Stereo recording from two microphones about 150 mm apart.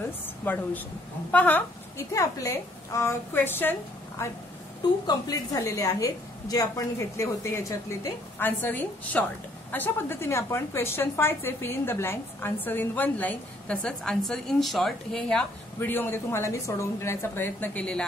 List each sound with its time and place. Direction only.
0.5 s a woman's voice: 10° left (ahead or behind)
2.1 s a woman's voice: 20° left (ahead or behind)
5.0 s a woman's voice: 25° left (ahead or behind); by 18.0 s 10° left (ahead or behind)